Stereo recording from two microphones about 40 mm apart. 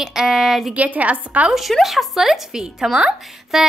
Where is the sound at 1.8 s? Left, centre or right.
Centre.